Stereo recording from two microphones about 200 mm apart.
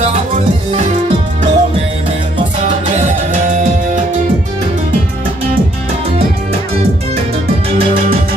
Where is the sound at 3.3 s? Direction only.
40° right (ahead or behind).